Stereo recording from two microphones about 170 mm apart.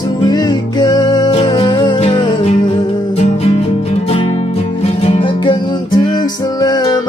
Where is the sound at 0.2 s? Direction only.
25° left (ahead or behind).